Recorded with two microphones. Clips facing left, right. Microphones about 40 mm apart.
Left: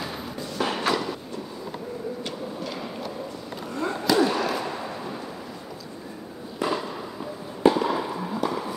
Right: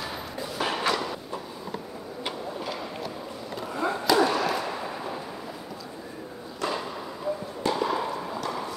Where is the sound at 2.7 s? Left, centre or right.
Centre.